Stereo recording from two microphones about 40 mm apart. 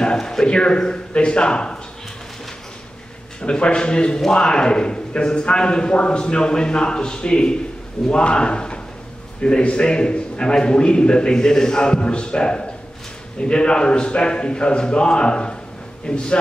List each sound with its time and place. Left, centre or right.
0.0 s speech: centre
3.4 s speech: left